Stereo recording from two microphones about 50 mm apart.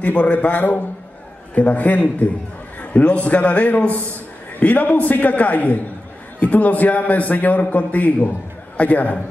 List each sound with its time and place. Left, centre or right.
0.0 s a man's voice: left